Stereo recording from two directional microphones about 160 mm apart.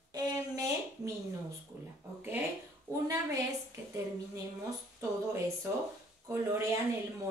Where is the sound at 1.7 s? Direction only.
10° right (ahead or behind).